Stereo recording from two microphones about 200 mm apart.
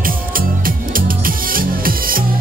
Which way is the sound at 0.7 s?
45° right (ahead or behind).